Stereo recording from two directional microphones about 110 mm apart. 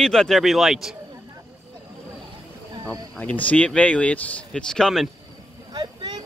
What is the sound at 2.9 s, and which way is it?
Speech, 15° left (ahead or behind).